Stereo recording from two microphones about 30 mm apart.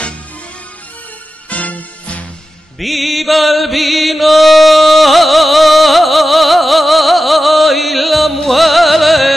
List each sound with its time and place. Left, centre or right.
1.5 s music: left
2.8 s chant: centre
8.5 s music: centre